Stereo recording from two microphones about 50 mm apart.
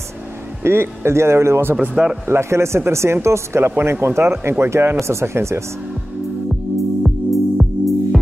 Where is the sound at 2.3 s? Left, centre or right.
Right.